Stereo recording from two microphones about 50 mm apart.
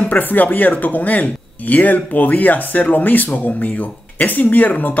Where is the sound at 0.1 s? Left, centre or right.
Left.